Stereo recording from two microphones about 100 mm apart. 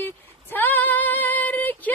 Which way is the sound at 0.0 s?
20° left (ahead or behind).